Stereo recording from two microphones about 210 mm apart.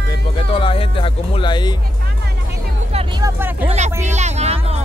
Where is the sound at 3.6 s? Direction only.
30° right (ahead or behind).